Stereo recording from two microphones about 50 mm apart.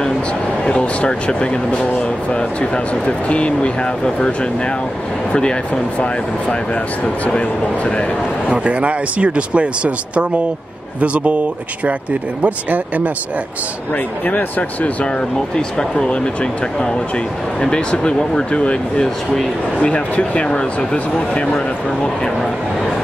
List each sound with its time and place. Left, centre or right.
0.7 s speech: left
5.3 s speech: centre
7.3 s speech: left
8.5 s speech: right
14.2 s speech: left
15.5 s speech: centre
17.6 s speech: centre